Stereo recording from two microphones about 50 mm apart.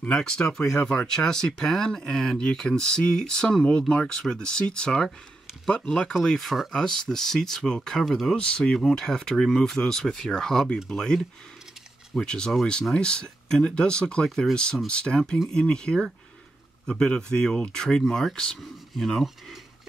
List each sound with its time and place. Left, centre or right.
0.1 s speech: centre
8.1 s speech: centre
8.4 s speech: centre
8.7 s speech: centre
12.3 s speech: centre